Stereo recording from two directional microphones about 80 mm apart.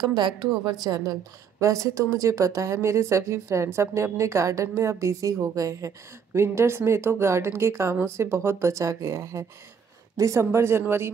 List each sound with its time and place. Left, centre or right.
0.0 s a woman's voice: right